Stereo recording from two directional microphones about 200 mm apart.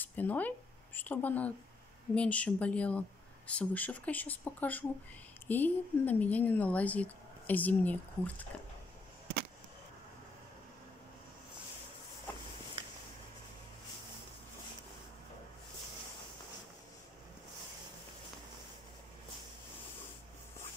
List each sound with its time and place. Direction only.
0.0 s a woman's voice: 10° left (ahead or behind)